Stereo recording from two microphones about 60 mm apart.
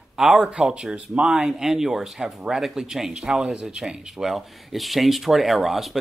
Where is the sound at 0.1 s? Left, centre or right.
Centre.